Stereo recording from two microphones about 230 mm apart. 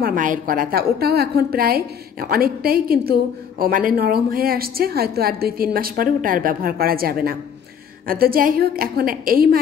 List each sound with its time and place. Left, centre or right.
0.0 s a woman's voice: right